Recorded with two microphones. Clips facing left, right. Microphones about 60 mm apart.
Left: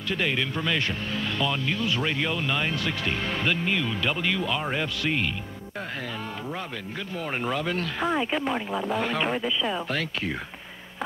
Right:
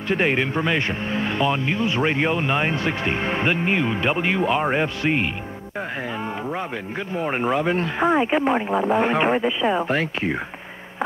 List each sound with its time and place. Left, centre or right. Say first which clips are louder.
0.1 s speech: right 6 dB; right
7.2 s speech: right 7 dB; right